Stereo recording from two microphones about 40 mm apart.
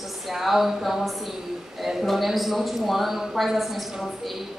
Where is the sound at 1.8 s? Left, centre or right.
Centre.